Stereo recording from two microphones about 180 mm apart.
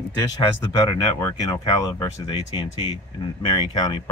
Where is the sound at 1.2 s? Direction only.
20° left (ahead or behind).